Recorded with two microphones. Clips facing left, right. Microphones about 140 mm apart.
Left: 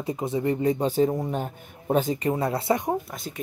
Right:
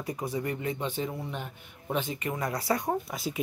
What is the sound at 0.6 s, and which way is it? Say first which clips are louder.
A man's voice: left 10 dB; 40° left (ahead or behind).